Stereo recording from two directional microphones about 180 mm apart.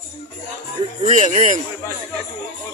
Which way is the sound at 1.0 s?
40° right (ahead or behind).